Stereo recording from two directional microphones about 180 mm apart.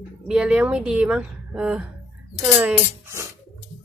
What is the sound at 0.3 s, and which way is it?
Speech, 5° right (ahead or behind).